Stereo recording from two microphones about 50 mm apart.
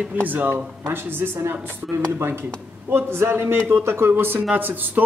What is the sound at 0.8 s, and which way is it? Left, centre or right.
Speech, right.